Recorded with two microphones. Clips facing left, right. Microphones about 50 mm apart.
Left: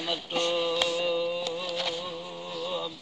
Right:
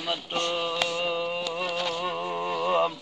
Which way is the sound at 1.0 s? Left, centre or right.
Right.